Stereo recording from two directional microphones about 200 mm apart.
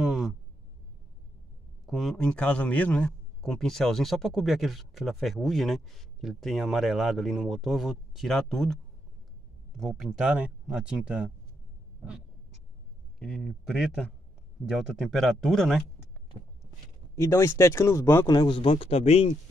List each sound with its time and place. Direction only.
0.0 s a sound: centre (ahead or behind)
1.9 s speech: centre (ahead or behind)
13.2 s speech: centre (ahead or behind)
17.1 s speech: 15° left (ahead or behind); by 19.3 s 30° left (ahead or behind)